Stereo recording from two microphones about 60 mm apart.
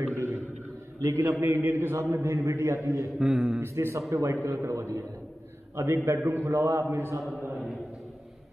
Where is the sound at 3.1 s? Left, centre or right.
Centre.